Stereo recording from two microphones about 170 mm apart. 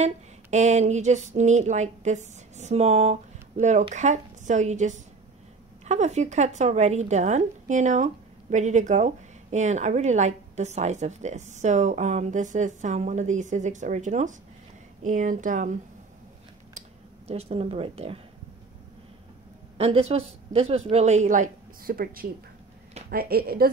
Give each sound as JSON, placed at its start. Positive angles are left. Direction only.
{"t": 0.0, "sound": "a woman's voice", "side_deg": -45}
{"t": 17.3, "sound": "speech", "side_deg": -35}
{"t": 19.8, "sound": "a woman's voice", "side_deg": -35}